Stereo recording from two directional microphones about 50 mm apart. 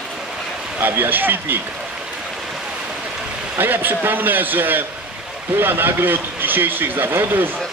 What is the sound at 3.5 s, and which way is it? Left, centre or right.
A man's voice, right.